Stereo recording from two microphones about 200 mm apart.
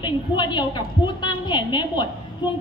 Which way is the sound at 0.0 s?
20° left (ahead or behind).